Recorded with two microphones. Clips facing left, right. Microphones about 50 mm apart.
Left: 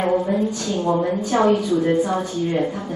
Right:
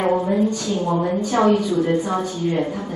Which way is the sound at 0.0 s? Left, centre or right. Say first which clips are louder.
Right 1 dB; centre.